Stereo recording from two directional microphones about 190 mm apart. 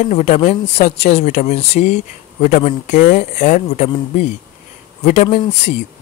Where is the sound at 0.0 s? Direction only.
40° left (ahead or behind).